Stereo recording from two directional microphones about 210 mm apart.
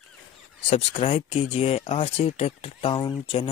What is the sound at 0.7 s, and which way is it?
Speech, 30° left (ahead or behind).